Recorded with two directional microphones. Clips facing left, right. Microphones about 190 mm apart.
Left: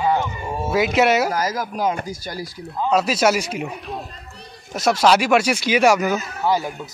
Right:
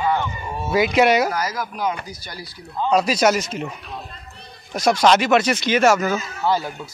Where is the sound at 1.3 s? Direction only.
40° left (ahead or behind).